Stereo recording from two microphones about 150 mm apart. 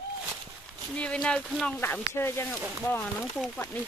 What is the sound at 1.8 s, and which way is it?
Speech, 15° left (ahead or behind).